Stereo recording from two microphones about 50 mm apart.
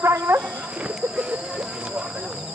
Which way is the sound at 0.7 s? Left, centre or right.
Right.